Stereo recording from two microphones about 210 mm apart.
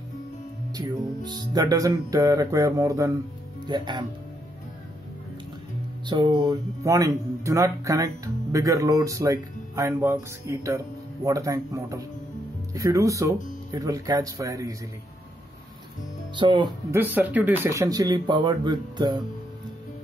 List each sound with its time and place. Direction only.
0.7 s speech: 20° right (ahead or behind)
6.0 s speech: 20° right (ahead or behind)
16.3 s speech: 20° right (ahead or behind)
16.9 s speech: 10° right (ahead or behind)